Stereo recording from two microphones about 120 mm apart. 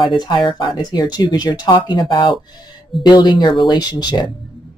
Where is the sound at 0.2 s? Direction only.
40° left (ahead or behind).